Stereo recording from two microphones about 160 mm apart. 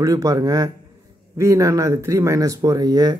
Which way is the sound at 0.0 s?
20° right (ahead or behind).